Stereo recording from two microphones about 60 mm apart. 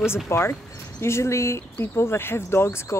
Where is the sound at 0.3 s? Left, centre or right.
Left.